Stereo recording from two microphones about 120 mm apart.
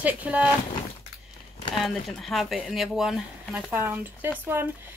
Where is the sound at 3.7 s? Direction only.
20° right (ahead or behind).